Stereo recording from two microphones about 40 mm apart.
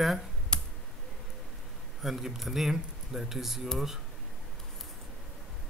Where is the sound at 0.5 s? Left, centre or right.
Left.